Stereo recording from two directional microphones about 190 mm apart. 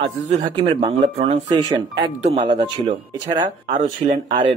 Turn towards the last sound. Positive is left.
turn(degrees=-25)  # may be behind; listen again after turning